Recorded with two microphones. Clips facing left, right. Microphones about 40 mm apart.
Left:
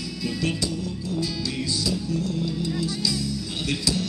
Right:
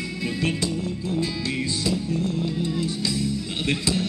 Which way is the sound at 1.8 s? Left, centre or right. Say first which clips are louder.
Right 2 dB; right.